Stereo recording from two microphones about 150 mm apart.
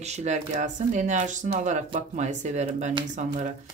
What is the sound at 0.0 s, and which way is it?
Speech, 50° right (ahead or behind).